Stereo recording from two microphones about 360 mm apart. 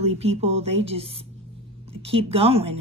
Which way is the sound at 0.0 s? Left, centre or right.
Centre.